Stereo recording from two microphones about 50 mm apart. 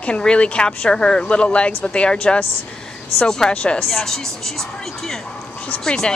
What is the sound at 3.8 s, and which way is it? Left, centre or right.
Speech, centre.